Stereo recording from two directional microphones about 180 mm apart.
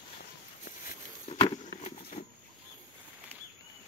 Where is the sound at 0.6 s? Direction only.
45° left (ahead or behind).